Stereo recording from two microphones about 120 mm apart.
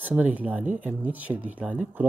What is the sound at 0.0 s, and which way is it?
Speech, 15° right (ahead or behind).